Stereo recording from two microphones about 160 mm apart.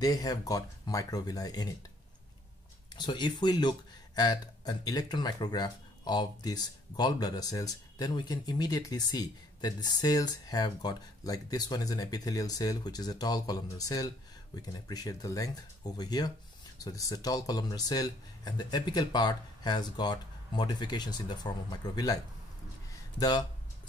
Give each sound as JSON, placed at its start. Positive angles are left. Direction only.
{"t": 0.0, "sound": "speech", "side_deg": 25}
{"t": 3.0, "sound": "speech", "side_deg": 25}